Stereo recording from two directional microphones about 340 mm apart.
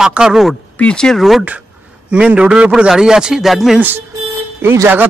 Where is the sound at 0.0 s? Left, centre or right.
Centre.